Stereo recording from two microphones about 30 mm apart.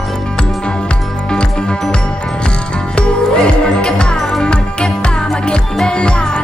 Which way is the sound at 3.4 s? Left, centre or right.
Left.